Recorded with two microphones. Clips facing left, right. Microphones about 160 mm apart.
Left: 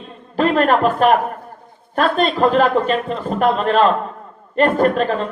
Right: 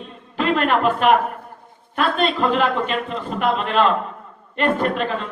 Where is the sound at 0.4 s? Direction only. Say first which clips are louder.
Left 4 dB; 40° left (ahead or behind).